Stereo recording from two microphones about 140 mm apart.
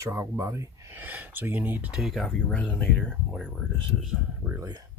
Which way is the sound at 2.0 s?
Centre (ahead or behind).